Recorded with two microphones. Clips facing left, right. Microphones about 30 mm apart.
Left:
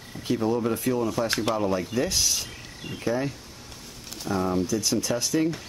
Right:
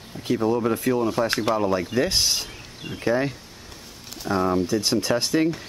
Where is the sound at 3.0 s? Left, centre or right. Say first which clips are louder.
Right 4 dB; right.